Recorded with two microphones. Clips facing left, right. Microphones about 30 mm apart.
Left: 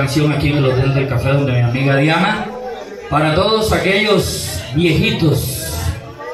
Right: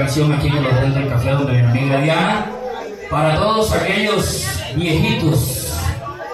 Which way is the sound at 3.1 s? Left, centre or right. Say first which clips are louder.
Left 2 dB; left.